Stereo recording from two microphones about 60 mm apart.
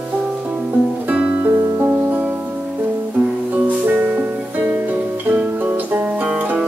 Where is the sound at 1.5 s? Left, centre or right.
Right.